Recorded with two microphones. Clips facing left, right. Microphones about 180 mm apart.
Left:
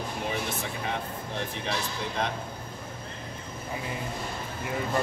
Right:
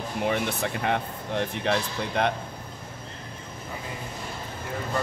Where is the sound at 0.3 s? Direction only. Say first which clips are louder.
Right 5 dB; 65° right (ahead or behind).